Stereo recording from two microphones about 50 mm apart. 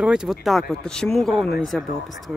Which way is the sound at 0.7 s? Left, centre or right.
Centre.